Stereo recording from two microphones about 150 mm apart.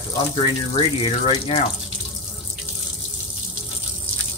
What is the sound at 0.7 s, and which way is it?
Speech, 40° left (ahead or behind).